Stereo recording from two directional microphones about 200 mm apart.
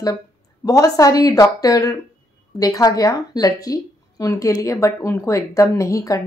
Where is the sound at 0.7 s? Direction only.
15° left (ahead or behind).